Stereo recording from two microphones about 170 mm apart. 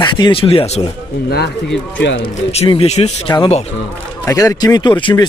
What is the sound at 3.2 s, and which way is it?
Speech, 30° left (ahead or behind).